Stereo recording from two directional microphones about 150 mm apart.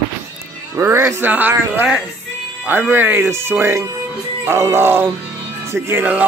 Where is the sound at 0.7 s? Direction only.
15° right (ahead or behind).